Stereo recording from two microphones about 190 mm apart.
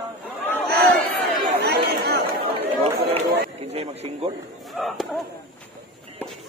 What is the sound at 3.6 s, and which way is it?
Speech, 35° right (ahead or behind).